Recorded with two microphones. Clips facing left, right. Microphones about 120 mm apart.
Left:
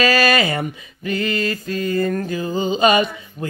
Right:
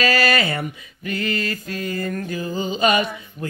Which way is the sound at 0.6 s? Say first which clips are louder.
Left 3 dB; 25° left (ahead or behind).